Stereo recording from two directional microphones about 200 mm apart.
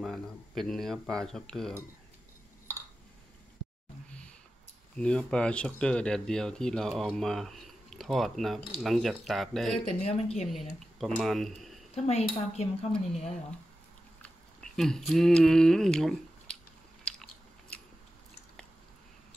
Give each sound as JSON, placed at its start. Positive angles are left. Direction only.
{"t": 0.0, "sound": "speech", "side_deg": 0}
{"t": 4.9, "sound": "speech", "side_deg": 5}
{"t": 10.0, "sound": "a woman's voice", "side_deg": 30}
{"t": 10.4, "sound": "speech", "side_deg": 0}
{"t": 11.9, "sound": "speech", "side_deg": 30}
{"t": 14.2, "sound": "speech", "side_deg": 5}
{"t": 17.0, "sound": "biting", "side_deg": 5}